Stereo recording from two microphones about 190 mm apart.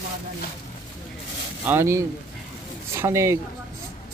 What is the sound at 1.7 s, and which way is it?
Speech, 15° right (ahead or behind).